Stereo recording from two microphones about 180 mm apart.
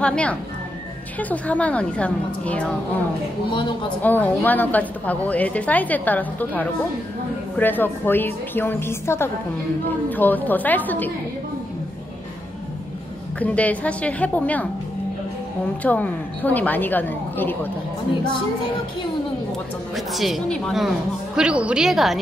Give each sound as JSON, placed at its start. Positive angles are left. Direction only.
{"t": 0.0, "sound": "a woman's voice", "side_deg": 5}
{"t": 4.0, "sound": "a woman's voice", "side_deg": 10}
{"t": 13.4, "sound": "a woman's voice", "side_deg": 10}
{"t": 15.8, "sound": "a woman's voice", "side_deg": 10}
{"t": 20.2, "sound": "a woman's voice", "side_deg": 0}